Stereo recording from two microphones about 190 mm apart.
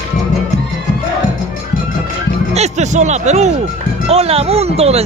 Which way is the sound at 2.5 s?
35° right (ahead or behind).